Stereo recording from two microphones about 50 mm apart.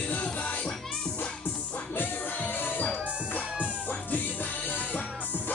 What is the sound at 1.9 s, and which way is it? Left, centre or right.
Music, left.